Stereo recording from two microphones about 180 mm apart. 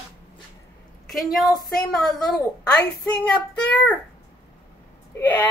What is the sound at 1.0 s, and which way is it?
A woman's voice, centre (ahead or behind).